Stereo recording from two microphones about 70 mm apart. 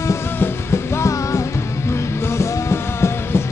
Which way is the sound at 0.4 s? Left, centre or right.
Left.